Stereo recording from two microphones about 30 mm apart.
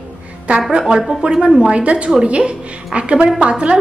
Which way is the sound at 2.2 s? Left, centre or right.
Right.